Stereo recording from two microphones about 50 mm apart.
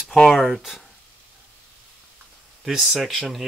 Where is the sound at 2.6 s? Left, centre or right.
Centre.